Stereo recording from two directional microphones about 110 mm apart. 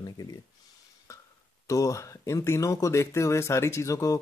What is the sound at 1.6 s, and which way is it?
Speech, 30° left (ahead or behind).